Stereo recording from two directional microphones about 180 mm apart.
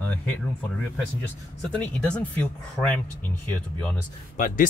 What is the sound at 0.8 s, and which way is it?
Speech, 5° left (ahead or behind).